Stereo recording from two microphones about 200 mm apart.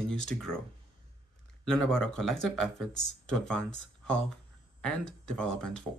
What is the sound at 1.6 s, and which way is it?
Speech, 5° left (ahead or behind).